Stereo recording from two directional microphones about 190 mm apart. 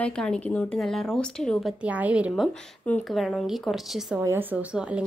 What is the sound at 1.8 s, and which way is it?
Speech, 5° right (ahead or behind).